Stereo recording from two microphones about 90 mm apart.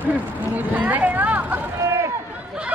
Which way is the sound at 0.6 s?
20° right (ahead or behind).